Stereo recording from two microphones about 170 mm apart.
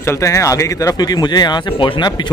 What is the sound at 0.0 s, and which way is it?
Speech, 15° left (ahead or behind).